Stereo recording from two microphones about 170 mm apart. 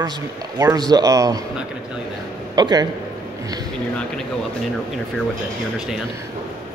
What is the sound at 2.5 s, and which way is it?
Speech, 25° right (ahead or behind).